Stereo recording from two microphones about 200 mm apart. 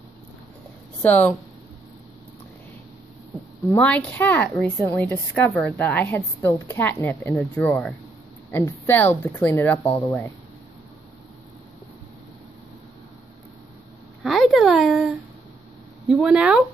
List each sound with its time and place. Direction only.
1.0 s a woman's voice: 10° left (ahead or behind)
3.6 s a woman's voice: 5° left (ahead or behind)
14.2 s a sound: centre (ahead or behind)
16.1 s speech: centre (ahead or behind)